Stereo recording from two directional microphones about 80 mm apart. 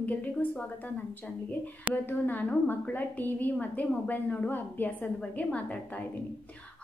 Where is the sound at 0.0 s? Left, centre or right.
Centre.